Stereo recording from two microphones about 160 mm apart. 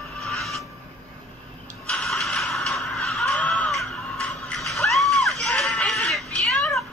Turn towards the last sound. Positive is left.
turn(degrees=0)  # may be behind; listen again after turning